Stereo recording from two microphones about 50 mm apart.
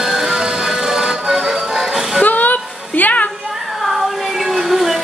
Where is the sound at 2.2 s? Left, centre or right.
Left.